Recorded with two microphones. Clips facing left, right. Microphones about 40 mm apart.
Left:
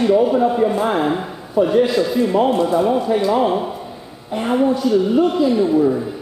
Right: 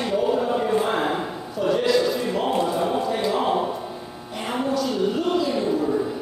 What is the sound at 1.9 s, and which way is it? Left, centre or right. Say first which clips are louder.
A man's voice: left 4 dB; centre.